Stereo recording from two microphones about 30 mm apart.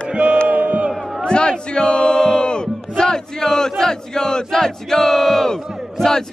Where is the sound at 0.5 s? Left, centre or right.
Right.